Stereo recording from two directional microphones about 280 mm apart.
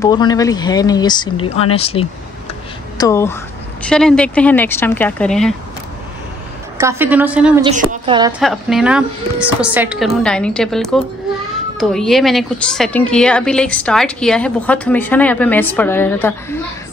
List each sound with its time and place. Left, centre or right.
0.0 s a woman's voice: centre
6.8 s a woman's voice: centre
7.6 s a woman's voice: right
8.3 s a woman's voice: centre